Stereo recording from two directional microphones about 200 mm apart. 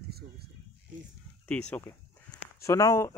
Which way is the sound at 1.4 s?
5° left (ahead or behind).